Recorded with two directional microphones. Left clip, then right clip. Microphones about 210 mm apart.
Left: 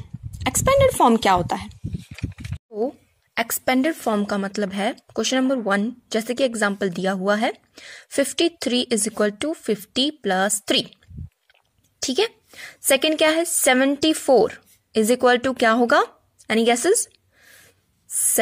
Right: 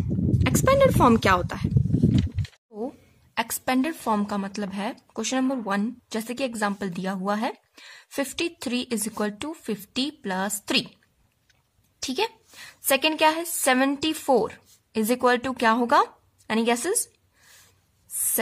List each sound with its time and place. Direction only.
0.4 s a woman's voice: 5° left (ahead or behind)
3.3 s a woman's voice: 15° left (ahead or behind)
12.0 s a woman's voice: 15° left (ahead or behind)